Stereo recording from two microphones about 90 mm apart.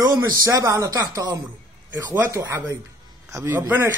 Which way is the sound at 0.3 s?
40° right (ahead or behind).